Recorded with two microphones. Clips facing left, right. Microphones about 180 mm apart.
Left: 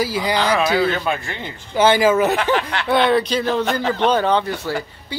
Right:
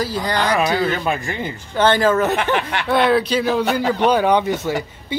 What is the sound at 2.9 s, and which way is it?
Speech, 5° right (ahead or behind).